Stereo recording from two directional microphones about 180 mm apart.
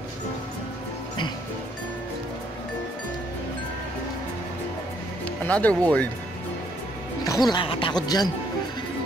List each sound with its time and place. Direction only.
5.4 s speech: 10° left (ahead or behind)
7.2 s speech: 20° left (ahead or behind)